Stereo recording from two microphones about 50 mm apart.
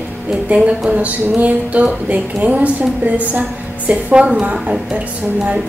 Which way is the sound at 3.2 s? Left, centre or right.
Right.